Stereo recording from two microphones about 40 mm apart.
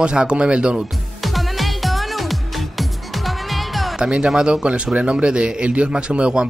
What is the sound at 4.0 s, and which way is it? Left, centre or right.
Speech, right.